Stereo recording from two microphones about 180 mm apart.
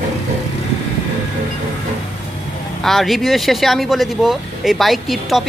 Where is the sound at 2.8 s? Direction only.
Centre (ahead or behind).